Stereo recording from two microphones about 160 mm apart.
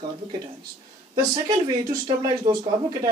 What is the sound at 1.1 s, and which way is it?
Speech, 35° right (ahead or behind).